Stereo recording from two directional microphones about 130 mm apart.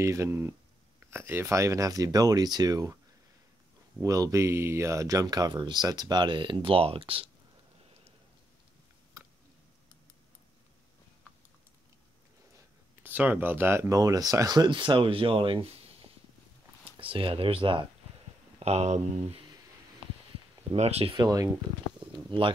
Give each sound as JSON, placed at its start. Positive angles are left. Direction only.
{"t": 0.0, "sound": "speech", "side_deg": -20}
{"t": 4.0, "sound": "speech", "side_deg": -25}
{"t": 13.0, "sound": "speech", "side_deg": -15}
{"t": 18.6, "sound": "speech", "side_deg": -55}
{"t": 20.7, "sound": "speech", "side_deg": -55}
{"t": 21.2, "sound": "speech", "side_deg": -25}